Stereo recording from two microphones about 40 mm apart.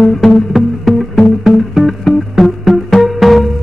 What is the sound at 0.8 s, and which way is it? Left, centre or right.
Music, centre.